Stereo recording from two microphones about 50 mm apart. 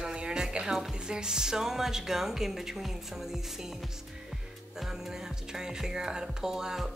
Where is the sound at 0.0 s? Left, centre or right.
Centre.